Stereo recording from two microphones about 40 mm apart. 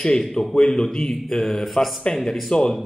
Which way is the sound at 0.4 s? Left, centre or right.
Centre.